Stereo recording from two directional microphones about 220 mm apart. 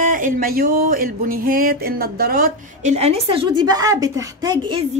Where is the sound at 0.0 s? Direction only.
40° right (ahead or behind); by 4.8 s 15° right (ahead or behind).